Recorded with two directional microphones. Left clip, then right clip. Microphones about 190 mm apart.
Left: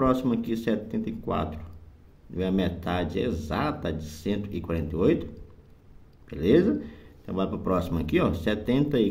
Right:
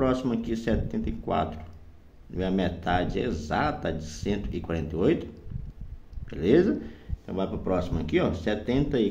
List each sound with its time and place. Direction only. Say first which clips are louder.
0.0 s speech: left 2 dB; 15° left (ahead or behind)